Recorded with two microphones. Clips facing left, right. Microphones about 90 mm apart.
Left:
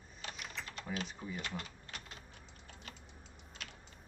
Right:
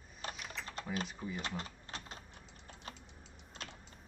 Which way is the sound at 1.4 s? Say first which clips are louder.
Right 2 dB; 30° right (ahead or behind).